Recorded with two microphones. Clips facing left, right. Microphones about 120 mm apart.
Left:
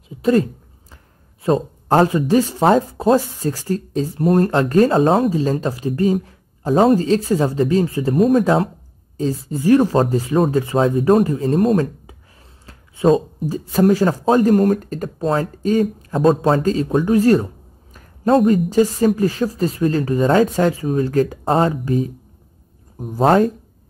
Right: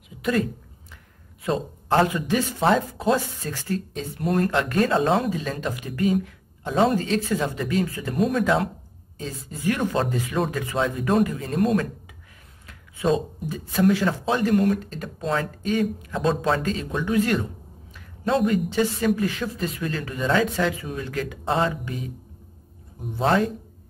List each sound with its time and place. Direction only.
0.2 s a woman's voice: 35° left (ahead or behind)
12.6 s a sound: 35° left (ahead or behind)
13.4 s speech: 40° left (ahead or behind)